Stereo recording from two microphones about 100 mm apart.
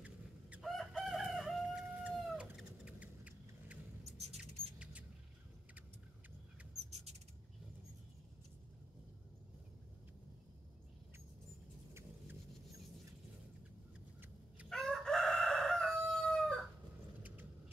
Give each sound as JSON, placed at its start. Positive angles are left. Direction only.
{"t": 0.6, "sound": "chicken", "side_deg": 0}
{"t": 1.7, "sound": "a sound", "side_deg": -15}
{"t": 4.0, "sound": "rodents", "side_deg": -90}
{"t": 14.7, "sound": "crowing", "side_deg": 5}